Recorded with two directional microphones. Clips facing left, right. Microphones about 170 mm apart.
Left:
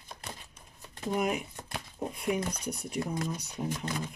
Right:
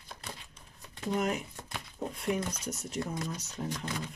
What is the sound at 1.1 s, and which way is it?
Speech, 15° left (ahead or behind).